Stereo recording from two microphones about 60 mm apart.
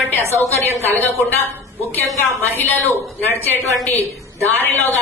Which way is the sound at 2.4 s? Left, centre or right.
Left.